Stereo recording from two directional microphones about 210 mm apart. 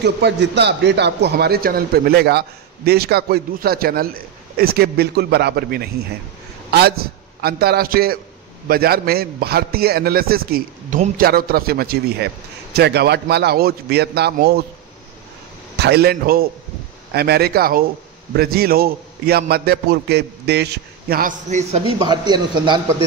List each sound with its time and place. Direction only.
0.0 s a man's voice: 55° right (ahead or behind)
7.4 s a man's voice: 50° right (ahead or behind)
15.8 s a man's voice: 50° right (ahead or behind); by 22.8 s 20° right (ahead or behind)